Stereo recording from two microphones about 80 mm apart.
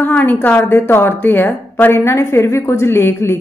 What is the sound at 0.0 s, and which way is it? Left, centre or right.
A woman's voice, left.